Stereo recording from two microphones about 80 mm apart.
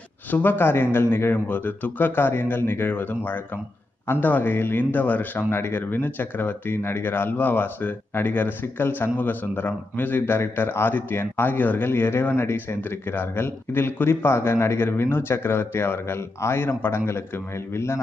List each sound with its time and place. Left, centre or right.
0.3 s a man's voice: left